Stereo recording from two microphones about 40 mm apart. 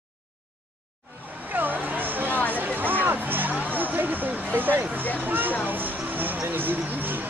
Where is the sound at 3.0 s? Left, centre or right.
Right.